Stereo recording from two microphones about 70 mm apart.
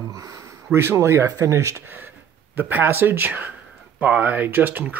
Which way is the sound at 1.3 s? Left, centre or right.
Right.